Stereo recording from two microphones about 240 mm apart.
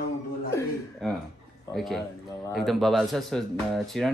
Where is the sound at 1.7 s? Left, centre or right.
Centre.